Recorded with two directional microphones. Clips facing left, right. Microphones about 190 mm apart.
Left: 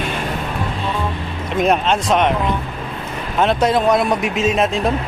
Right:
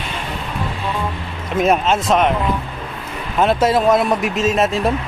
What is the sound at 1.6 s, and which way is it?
Speech, 5° right (ahead or behind).